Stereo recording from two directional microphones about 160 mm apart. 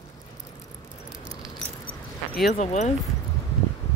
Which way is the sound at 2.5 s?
50° left (ahead or behind).